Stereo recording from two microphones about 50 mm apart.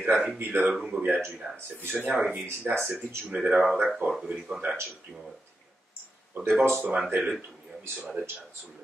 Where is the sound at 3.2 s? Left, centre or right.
Right.